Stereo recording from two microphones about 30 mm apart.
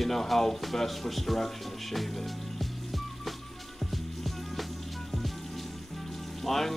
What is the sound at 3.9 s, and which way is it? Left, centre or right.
Music, centre.